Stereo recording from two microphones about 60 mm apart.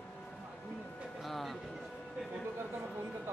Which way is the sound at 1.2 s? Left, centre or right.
Centre.